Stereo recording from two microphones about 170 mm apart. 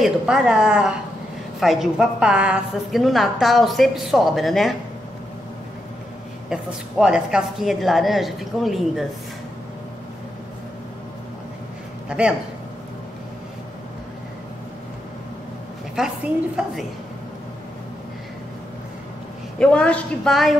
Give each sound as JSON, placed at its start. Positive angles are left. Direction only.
{"t": 0.0, "sound": "a woman's voice", "side_deg": -5}
{"t": 6.5, "sound": "a woman's voice", "side_deg": -5}
{"t": 12.1, "sound": "a woman's voice", "side_deg": -5}
{"t": 16.0, "sound": "a woman's voice", "side_deg": -5}
{"t": 19.6, "sound": "a woman's voice", "side_deg": 5}